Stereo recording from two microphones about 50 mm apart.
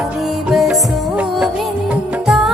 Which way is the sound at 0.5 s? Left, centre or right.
Centre.